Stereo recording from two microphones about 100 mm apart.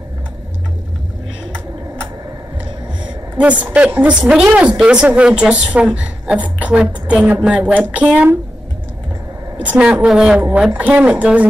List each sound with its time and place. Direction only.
3.3 s speech: 15° right (ahead or behind)
9.6 s speech: 10° right (ahead or behind)